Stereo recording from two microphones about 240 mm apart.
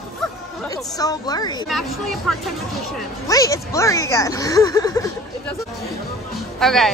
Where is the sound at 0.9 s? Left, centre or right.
Centre.